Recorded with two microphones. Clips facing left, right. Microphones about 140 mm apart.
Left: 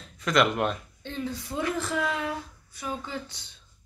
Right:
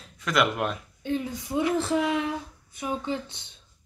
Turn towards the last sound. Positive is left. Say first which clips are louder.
# right 4 dB
turn(degrees=-20)  # may be behind; listen again after turning